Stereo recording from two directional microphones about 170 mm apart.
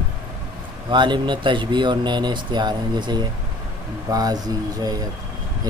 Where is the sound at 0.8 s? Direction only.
25° right (ahead or behind).